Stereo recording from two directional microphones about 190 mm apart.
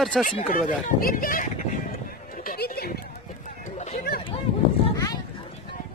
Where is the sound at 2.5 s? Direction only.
55° left (ahead or behind).